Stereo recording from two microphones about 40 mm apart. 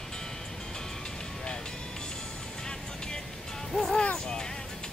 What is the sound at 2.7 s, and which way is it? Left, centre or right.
Music, centre.